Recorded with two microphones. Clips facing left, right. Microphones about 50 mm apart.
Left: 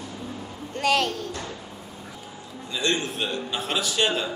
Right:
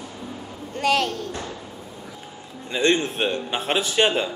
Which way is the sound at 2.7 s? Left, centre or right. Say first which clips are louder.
Right 5 dB; right.